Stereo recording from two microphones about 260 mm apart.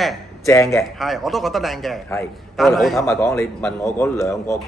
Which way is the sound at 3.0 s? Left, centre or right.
Centre.